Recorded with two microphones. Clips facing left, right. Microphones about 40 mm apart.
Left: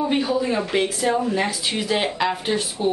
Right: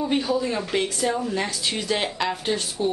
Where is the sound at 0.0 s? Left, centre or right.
Centre.